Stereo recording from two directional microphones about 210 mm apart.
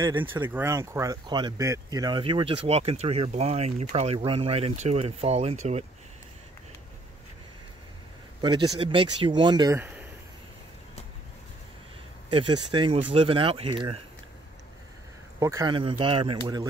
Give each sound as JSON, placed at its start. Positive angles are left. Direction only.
{"t": 0.2, "sound": "speech", "side_deg": -10}
{"t": 8.4, "sound": "speech", "side_deg": -20}
{"t": 9.8, "sound": "a sound", "side_deg": -10}
{"t": 12.3, "sound": "speech", "side_deg": -25}
{"t": 15.3, "sound": "speech", "side_deg": -15}